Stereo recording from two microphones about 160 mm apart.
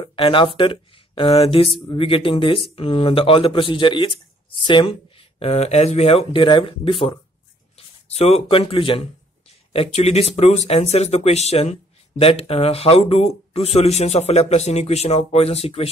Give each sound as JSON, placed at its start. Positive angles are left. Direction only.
{"t": 0.0, "sound": "speech", "side_deg": 35}